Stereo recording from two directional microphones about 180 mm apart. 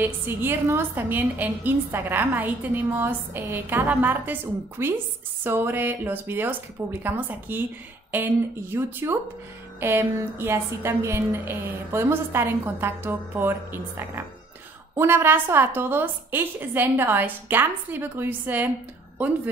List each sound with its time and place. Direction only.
0.0 s a woman's voice: 10° right (ahead or behind)